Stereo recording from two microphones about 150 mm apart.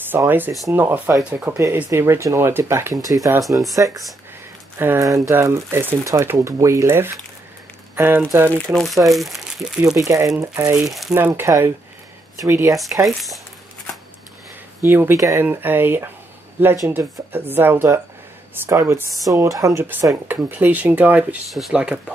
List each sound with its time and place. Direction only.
0.3 s speech: 15° right (ahead or behind)
8.7 s speech: centre (ahead or behind)
9.9 s speech: 20° right (ahead or behind)
10.9 s speech: centre (ahead or behind)
11.1 s speech: 15° right (ahead or behind)
13.0 s speech: centre (ahead or behind)
14.8 s speech: 15° right (ahead or behind)
21.5 s speech: centre (ahead or behind)